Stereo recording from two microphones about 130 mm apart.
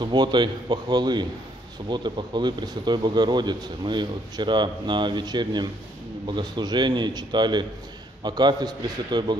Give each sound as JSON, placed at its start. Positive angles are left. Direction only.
{"t": 0.0, "sound": "speech", "side_deg": -35}